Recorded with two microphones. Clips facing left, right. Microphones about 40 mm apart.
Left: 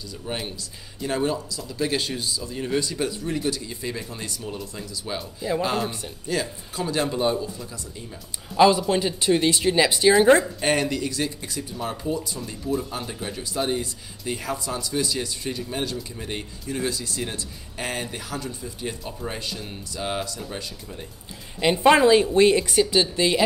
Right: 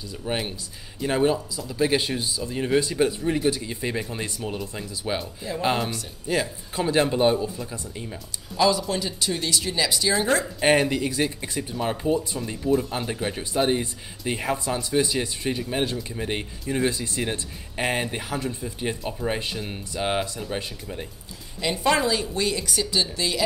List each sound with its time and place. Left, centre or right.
0.2 s speech: centre
8.5 s speech: left
10.6 s speech: centre
21.5 s speech: left